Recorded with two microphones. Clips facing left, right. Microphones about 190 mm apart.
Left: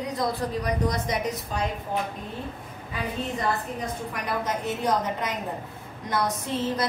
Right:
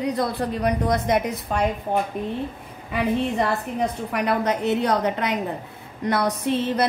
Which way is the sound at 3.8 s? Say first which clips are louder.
Right 7 dB; 65° right (ahead or behind).